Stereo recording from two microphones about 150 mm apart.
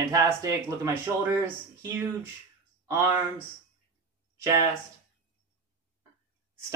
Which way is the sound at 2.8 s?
15° right (ahead or behind).